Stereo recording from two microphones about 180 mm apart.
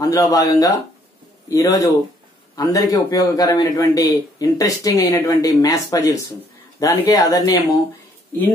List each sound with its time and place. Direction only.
0.0 s a man's voice: 20° left (ahead or behind)